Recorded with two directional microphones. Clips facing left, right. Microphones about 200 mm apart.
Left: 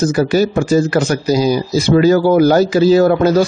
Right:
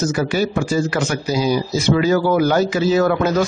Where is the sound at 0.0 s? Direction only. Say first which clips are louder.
Left 6 dB; 35° left (ahead or behind).